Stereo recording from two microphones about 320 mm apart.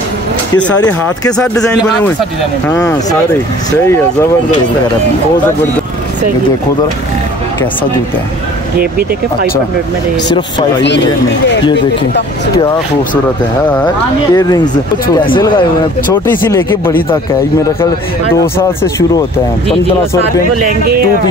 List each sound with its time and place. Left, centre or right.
0.6 s speech: centre
8.7 s speech: right
10.8 s speech: left
14.3 s speech: centre
16.1 s speech: centre
18.3 s speech: centre